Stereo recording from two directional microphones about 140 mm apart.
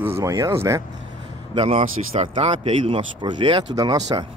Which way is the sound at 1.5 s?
45° right (ahead or behind).